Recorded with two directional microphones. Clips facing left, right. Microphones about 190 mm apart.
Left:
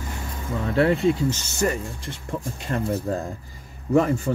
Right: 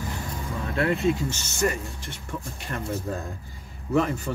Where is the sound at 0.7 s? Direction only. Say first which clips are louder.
Left 4 dB; 30° left (ahead or behind).